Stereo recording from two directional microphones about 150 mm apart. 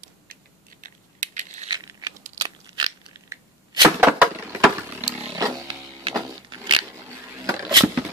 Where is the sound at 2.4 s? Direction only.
25° right (ahead or behind).